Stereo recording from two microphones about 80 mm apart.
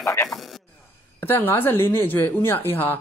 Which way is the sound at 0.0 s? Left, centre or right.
Left.